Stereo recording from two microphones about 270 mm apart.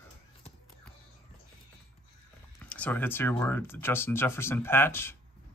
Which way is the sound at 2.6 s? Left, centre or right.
Centre.